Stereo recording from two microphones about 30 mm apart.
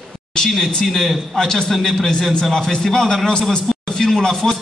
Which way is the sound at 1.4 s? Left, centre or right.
Centre.